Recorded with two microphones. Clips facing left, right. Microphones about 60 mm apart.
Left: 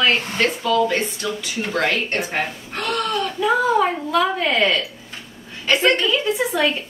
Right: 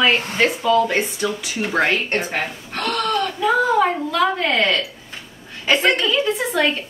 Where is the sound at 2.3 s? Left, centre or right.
Centre.